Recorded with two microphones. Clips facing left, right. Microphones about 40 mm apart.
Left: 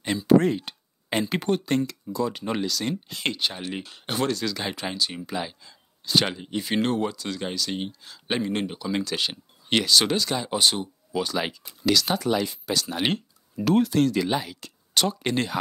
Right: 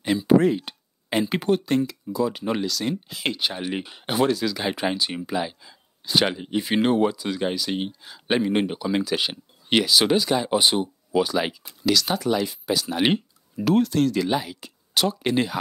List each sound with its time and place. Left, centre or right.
0.4 s speech: centre
4.7 s speech: centre
5.3 s speech: centre